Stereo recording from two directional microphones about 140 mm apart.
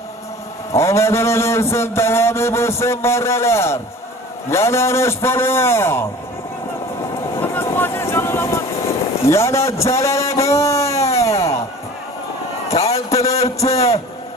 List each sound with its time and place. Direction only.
0.7 s a man's voice: 20° left (ahead or behind)
7.3 s vehicle: 15° left (ahead or behind)
9.2 s a man's voice: 20° left (ahead or behind)
11.1 s a sound: 20° left (ahead or behind)
12.7 s a man's voice: 50° left (ahead or behind)